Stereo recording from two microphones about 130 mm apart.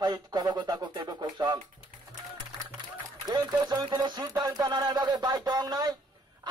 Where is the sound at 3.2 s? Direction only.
35° right (ahead or behind).